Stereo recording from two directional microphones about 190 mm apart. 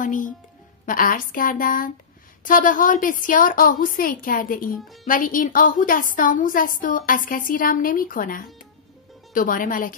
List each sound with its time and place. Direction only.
0.0 s a woman's voice: 45° left (ahead or behind)